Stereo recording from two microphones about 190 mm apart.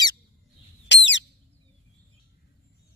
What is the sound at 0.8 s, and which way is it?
Bird, 70° left (ahead or behind).